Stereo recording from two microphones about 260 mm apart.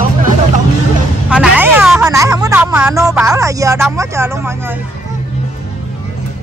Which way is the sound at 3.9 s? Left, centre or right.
Centre.